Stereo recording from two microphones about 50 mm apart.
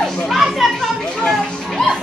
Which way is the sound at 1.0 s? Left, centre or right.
Centre.